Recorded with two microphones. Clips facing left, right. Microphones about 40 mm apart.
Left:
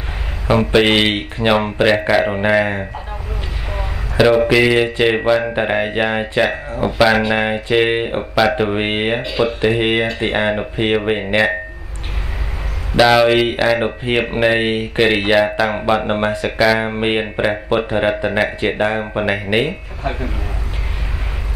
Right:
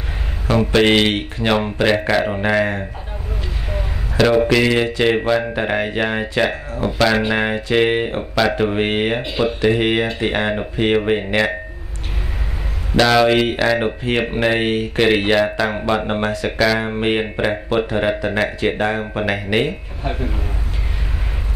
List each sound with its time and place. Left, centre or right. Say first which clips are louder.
0.5 s speech: left 1 dB; left
4.2 s speech: left 2 dB; centre
12.9 s speech: left 2 dB; centre